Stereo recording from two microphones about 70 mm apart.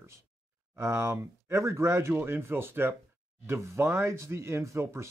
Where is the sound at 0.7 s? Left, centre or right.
Right.